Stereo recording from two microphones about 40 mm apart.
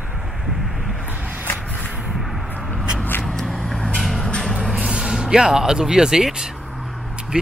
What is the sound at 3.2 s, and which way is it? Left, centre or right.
Vehicle, centre.